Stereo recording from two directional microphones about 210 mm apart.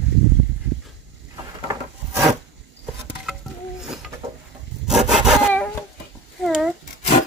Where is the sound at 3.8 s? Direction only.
Centre (ahead or behind).